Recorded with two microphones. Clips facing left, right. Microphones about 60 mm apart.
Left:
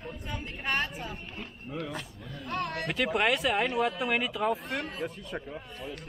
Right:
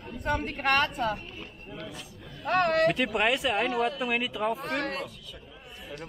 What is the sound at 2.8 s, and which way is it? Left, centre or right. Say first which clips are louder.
Speech: right 3 dB; centre.